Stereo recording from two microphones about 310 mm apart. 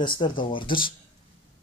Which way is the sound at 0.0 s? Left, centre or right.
Centre.